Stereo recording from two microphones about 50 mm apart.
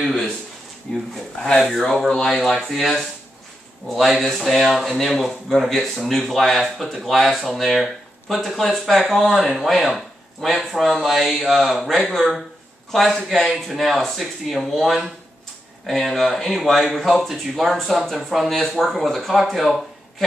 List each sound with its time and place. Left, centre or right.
1.1 s speech: centre
7.7 s a sound: centre
8.5 s speech: centre